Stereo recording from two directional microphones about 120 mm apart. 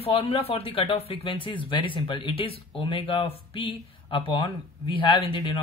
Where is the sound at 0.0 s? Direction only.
50° left (ahead or behind).